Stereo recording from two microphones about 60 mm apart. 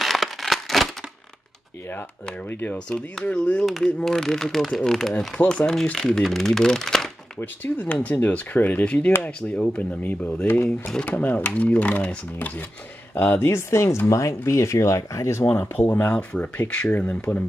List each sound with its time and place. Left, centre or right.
0.0 s a sound: centre
2.4 s speech: left
2.9 s speech: centre
7.3 s speech: left
15.8 s speech: left